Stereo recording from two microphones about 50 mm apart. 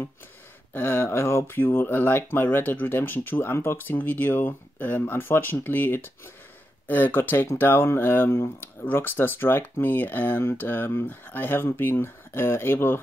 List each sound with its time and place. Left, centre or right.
0.7 s speech: left
1.6 s speech: left
3.7 s speech: left
6.9 s speech: left